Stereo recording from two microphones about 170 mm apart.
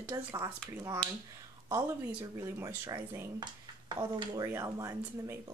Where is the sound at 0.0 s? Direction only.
15° right (ahead or behind).